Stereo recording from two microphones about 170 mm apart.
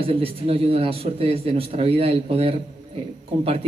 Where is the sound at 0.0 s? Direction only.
35° right (ahead or behind).